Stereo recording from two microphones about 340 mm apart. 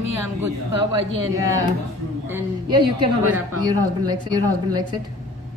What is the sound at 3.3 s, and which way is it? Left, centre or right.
Speech, centre.